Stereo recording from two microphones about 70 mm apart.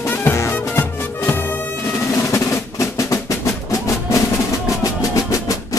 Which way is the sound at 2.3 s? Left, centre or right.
Left.